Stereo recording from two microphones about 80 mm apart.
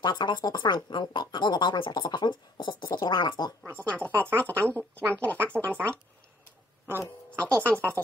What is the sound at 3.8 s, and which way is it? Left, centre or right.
Speech, centre.